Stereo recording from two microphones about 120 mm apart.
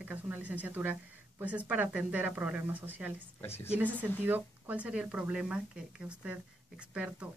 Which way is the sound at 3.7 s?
15° right (ahead or behind).